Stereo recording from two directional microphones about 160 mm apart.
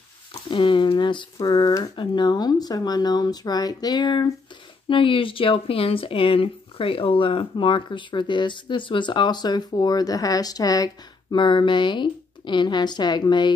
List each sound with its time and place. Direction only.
0.5 s speech: 30° left (ahead or behind)